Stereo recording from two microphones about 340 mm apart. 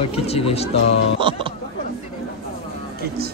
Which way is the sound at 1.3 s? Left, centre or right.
Centre.